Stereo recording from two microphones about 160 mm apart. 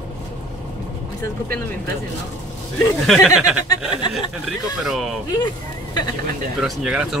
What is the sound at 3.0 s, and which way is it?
Speech, centre (ahead or behind).